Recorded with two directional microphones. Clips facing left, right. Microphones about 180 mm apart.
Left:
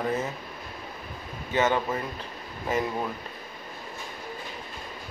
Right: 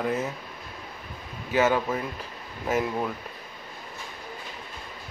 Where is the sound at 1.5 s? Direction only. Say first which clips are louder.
Right 2 dB; 5° right (ahead or behind).